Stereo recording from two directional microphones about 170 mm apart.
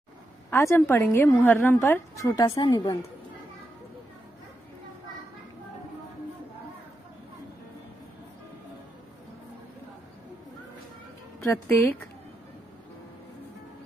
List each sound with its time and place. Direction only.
0.5 s a woman's voice: 15° left (ahead or behind)
11.4 s a woman's voice: 15° left (ahead or behind)